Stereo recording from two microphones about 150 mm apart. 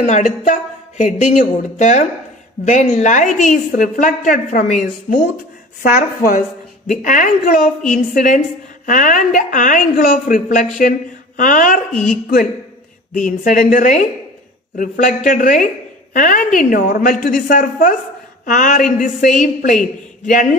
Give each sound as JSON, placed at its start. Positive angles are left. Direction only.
{"t": 0.0, "sound": "a woman's voice", "side_deg": 50}
{"t": 11.9, "sound": "a woman's voice", "side_deg": 5}
{"t": 13.1, "sound": "a woman's voice", "side_deg": 60}